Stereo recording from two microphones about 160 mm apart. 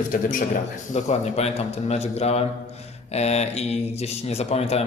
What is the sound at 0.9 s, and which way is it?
A man's voice, 45° left (ahead or behind).